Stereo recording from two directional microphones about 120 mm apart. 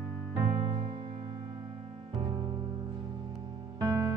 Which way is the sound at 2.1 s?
40° right (ahead or behind).